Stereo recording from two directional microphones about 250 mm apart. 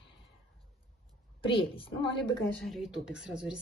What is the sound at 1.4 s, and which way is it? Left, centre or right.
Speech, left.